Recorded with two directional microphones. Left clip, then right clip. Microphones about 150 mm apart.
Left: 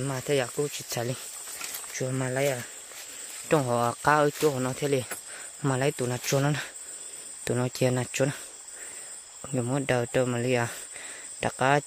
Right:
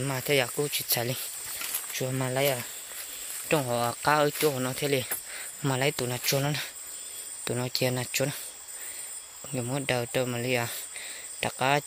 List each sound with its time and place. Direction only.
0.0 s speech: 35° left (ahead or behind)
2.2 s speech: 30° left (ahead or behind)
3.4 s speech: 55° left (ahead or behind)
9.5 s speech: 50° left (ahead or behind)
11.3 s cricket: 55° left (ahead or behind)